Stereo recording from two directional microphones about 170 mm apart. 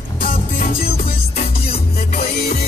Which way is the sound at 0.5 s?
60° left (ahead or behind).